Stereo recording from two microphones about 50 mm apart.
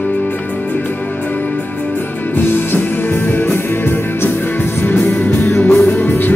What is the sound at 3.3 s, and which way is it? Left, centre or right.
Music, left.